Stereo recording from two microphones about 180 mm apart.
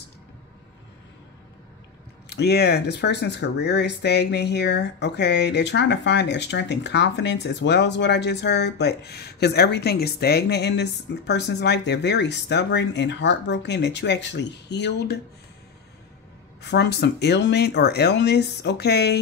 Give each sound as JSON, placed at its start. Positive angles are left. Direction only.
{"t": 2.2, "sound": "speech", "side_deg": 65}
{"t": 16.7, "sound": "speech", "side_deg": 65}